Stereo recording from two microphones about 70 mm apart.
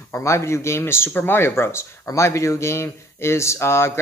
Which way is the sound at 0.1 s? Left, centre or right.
Left.